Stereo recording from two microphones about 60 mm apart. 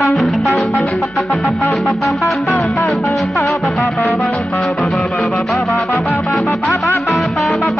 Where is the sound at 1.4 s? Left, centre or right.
Left.